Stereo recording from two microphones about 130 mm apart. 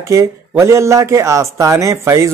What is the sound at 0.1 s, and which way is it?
Speech, 20° right (ahead or behind).